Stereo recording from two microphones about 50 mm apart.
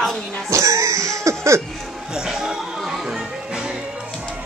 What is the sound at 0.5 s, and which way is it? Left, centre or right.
Cough, right.